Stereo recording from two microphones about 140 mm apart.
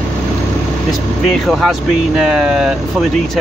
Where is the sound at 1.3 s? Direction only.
Centre (ahead or behind).